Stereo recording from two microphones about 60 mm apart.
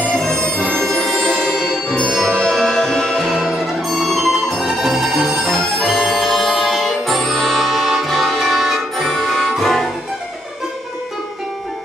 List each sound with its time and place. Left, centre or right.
0.1 s music: centre
3.3 s music: centre